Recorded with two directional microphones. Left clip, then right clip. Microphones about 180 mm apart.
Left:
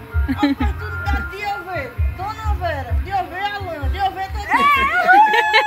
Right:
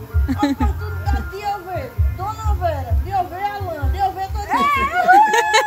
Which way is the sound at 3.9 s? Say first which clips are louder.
Right 1 dB; 10° left (ahead or behind).